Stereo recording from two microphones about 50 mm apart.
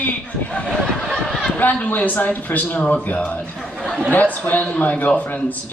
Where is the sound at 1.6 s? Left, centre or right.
Left.